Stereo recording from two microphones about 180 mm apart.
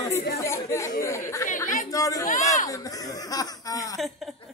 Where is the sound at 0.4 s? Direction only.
15° left (ahead or behind).